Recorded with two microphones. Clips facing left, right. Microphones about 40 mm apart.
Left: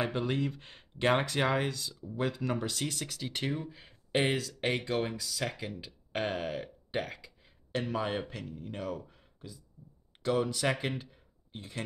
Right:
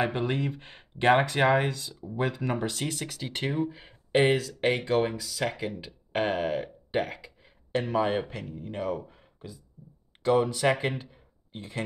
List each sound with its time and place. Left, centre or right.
0.0 s speech: centre